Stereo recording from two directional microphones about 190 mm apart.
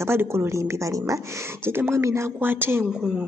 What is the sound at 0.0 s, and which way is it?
A woman's voice, 15° right (ahead or behind).